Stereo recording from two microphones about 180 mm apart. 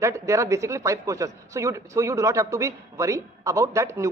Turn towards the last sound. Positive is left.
turn(degrees=-15)  # may be behind; listen again after turning